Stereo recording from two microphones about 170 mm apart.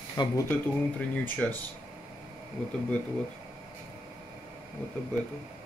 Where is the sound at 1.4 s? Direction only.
10° left (ahead or behind).